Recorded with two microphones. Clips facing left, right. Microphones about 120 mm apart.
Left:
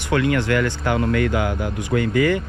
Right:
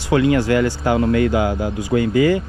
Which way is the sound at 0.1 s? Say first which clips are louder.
Right 4 dB; 25° right (ahead or behind).